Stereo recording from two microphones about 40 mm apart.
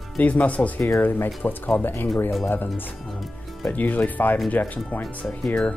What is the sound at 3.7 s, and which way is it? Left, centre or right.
Speech, left.